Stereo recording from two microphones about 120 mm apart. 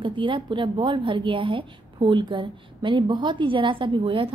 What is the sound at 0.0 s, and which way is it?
A woman's voice, 45° right (ahead or behind).